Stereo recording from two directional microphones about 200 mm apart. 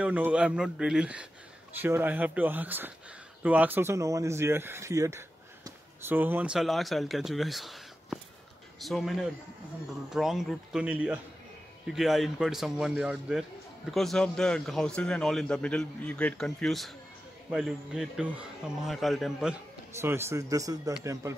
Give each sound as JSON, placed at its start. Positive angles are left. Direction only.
{"t": 0.0, "sound": "a man's voice", "side_deg": -5}
{"t": 20.0, "sound": "speech", "side_deg": -10}